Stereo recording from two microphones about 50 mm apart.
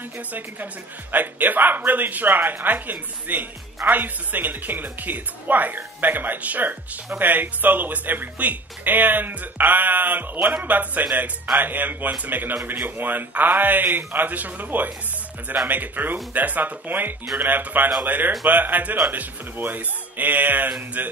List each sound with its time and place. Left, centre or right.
1.1 s speech: right